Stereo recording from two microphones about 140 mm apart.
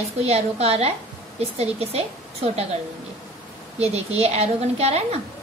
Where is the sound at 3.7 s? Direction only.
50° right (ahead or behind).